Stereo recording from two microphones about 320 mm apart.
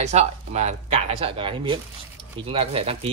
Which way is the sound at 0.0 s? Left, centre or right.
Right.